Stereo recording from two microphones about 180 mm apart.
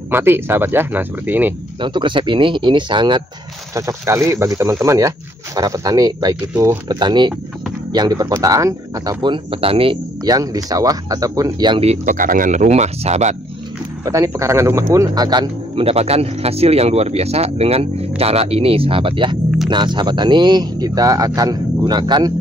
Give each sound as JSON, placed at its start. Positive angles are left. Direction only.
{"t": 0.1, "sound": "speech", "side_deg": -10}
{"t": 1.8, "sound": "speech", "side_deg": -25}
{"t": 14.0, "sound": "a man's voice", "side_deg": -15}